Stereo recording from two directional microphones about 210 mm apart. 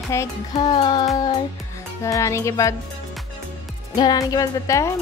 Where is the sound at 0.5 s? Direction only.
20° left (ahead or behind).